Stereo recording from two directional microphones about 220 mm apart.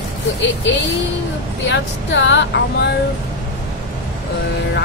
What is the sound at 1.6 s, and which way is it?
Speech, 55° left (ahead or behind).